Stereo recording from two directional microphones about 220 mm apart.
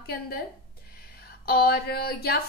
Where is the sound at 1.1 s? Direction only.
45° left (ahead or behind).